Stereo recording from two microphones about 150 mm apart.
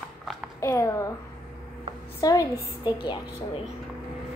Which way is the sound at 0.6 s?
20° left (ahead or behind).